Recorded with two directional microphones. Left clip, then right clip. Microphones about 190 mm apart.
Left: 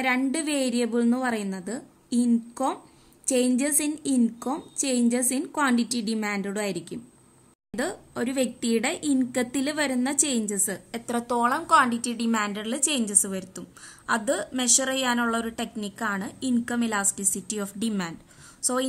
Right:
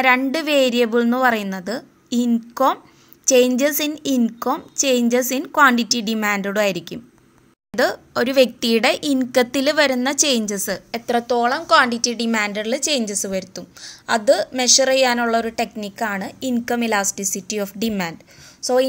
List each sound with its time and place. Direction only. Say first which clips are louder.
0.0 s a woman's voice: right 9 dB; 15° right (ahead or behind)